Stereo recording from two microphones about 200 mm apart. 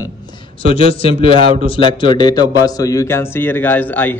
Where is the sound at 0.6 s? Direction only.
30° left (ahead or behind).